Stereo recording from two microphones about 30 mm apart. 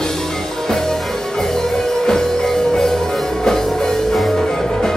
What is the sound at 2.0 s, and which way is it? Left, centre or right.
Music, centre.